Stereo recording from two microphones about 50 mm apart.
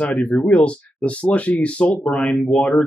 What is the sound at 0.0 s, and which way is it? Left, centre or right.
Speech, left.